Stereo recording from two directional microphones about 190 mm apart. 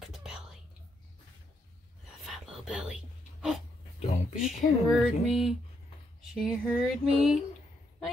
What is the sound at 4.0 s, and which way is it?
Speech, 35° left (ahead or behind).